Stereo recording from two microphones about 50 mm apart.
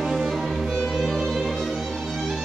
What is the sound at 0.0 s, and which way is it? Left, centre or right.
Music, centre.